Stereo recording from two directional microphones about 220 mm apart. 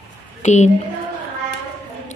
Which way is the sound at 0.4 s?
30° left (ahead or behind).